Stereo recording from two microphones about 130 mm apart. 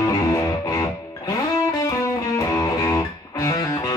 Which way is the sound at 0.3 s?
25° left (ahead or behind).